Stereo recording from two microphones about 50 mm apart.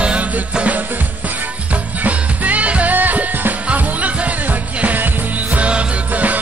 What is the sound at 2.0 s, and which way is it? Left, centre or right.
Music, right.